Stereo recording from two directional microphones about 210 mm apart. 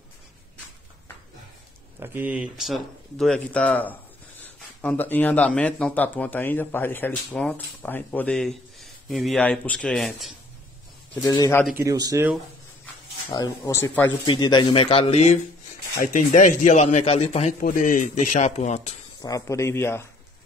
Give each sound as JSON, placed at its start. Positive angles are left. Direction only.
{"t": 2.0, "sound": "speech", "side_deg": -10}
{"t": 11.2, "sound": "speech", "side_deg": 15}
{"t": 11.8, "sound": "speech", "side_deg": -15}
{"t": 13.3, "sound": "speech", "side_deg": 15}
{"t": 14.2, "sound": "a man's voice", "side_deg": 20}
{"t": 19.2, "sound": "speech", "side_deg": 15}